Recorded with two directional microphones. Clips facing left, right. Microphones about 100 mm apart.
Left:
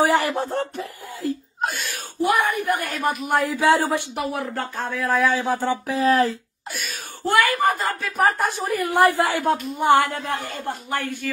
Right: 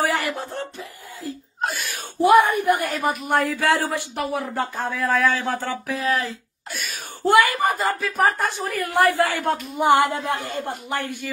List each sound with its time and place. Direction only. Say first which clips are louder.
0.0 s a sound: left 4 dB; 25° left (ahead or behind)
1.6 s a sound: right 2 dB; centre (ahead or behind)
2.2 s a woman's voice: right 5 dB; 20° right (ahead or behind)
3.0 s speech: even; centre (ahead or behind)
3.5 s a woman's voice: left 3 dB; 20° left (ahead or behind)
4.1 s speech: even; centre (ahead or behind)
5.3 s speech: left 3 dB; 15° left (ahead or behind)
5.9 s speech: left 6 dB; 30° left (ahead or behind)
6.7 s speech: even; centre (ahead or behind)
7.2 s a woman's voice: right 2 dB; 20° right (ahead or behind)
7.9 s speech: even; centre (ahead or behind)
8.6 s a woman's voice: left 2 dB; 20° left (ahead or behind)
9.4 s speech: left 2 dB; centre (ahead or behind)
9.8 s a woman's voice: right 2 dB; 15° right (ahead or behind)